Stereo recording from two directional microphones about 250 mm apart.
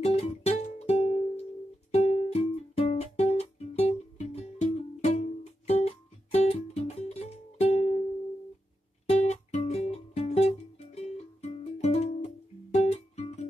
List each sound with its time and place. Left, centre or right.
0.0 s music: left
9.2 s music: left